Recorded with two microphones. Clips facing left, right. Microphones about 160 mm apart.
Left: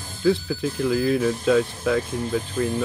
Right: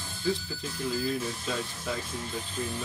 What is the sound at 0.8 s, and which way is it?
Speech, 70° left (ahead or behind).